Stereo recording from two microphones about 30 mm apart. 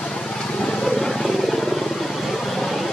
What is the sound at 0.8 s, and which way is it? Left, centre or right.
Vehicle, centre.